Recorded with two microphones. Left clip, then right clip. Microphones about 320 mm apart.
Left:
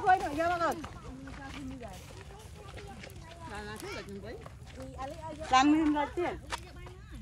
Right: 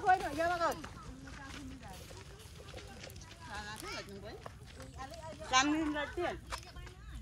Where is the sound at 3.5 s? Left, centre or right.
Centre.